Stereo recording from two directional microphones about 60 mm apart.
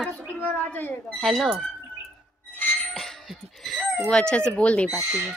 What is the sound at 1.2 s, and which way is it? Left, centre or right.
Speech, centre.